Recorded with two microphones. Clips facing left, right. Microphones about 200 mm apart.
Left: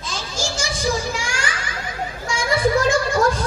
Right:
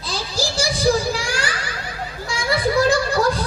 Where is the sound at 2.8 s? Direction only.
35° right (ahead or behind).